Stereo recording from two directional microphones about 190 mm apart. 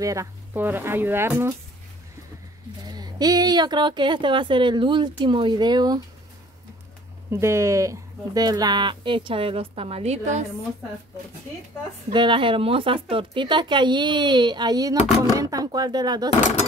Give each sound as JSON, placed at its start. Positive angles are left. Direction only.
{"t": 0.0, "sound": "speech", "side_deg": -15}
{"t": 2.9, "sound": "speech", "side_deg": -20}
{"t": 7.2, "sound": "speech", "side_deg": -15}
{"t": 12.1, "sound": "speech", "side_deg": -25}